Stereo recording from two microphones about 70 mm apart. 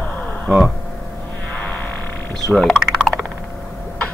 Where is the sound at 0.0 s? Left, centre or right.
Left.